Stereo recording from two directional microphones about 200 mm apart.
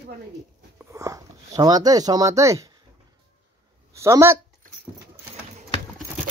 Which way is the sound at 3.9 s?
15° right (ahead or behind).